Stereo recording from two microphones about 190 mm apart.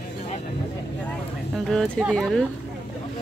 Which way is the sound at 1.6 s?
5° left (ahead or behind).